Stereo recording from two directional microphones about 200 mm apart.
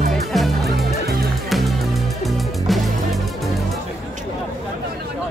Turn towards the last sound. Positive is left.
turn(degrees=0)  # may be behind; listen again after turning